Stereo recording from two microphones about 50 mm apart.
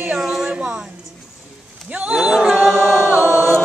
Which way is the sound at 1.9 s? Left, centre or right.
Right.